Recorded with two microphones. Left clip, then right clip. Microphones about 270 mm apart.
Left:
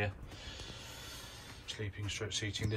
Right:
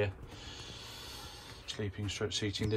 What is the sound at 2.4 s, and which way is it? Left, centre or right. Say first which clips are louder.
Speech: right 3 dB; centre.